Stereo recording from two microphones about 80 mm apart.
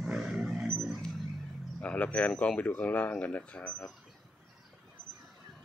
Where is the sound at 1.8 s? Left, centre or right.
Centre.